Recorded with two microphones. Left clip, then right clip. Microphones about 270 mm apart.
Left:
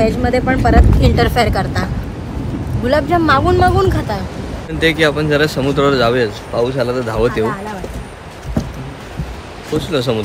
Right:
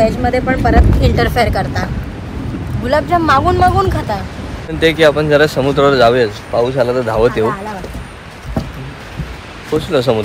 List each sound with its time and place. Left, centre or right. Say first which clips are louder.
0.0 s speech: right 1 dB; centre
2.9 s speech: right 1 dB; centre
9.8 s speech: right 4 dB; centre